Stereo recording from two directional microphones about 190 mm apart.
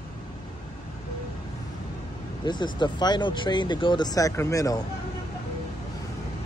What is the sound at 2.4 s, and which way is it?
Speech, 25° left (ahead or behind).